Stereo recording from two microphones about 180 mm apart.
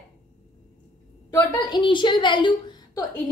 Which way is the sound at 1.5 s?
25° left (ahead or behind).